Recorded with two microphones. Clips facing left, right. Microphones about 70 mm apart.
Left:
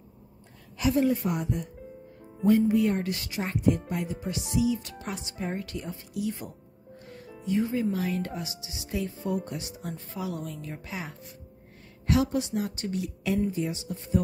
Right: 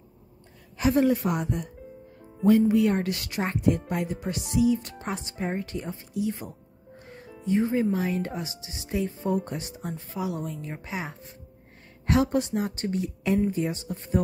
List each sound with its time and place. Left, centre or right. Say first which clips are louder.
0.9 s speech: right 3 dB; right
2.4 s a woman's voice: right 2 dB; right
7.0 s music: even; right
7.4 s speech: right 3 dB; right
9.8 s a woman's voice: right 3 dB; centre
12.1 s a woman's voice: right 2 dB; right